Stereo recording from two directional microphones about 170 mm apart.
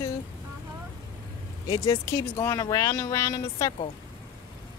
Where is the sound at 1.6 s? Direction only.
25° left (ahead or behind).